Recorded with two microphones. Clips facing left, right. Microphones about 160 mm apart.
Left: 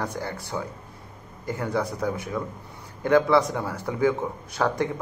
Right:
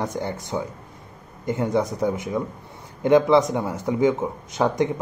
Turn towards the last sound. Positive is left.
turn(degrees=-20)  # may be behind; listen again after turning